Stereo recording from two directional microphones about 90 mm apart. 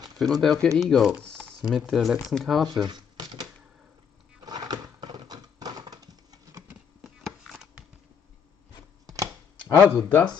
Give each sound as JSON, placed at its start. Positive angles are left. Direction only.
{"t": 0.2, "sound": "speech", "side_deg": 0}
{"t": 2.7, "sound": "speech", "side_deg": -50}
{"t": 4.5, "sound": "typewriter", "side_deg": -45}
{"t": 7.0, "sound": "a sound", "side_deg": -5}
{"t": 9.0, "sound": "chopping", "side_deg": -40}
{"t": 10.0, "sound": "speech", "side_deg": 20}